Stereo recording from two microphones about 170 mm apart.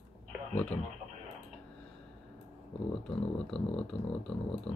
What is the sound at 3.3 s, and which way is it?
Speech, 5° left (ahead or behind).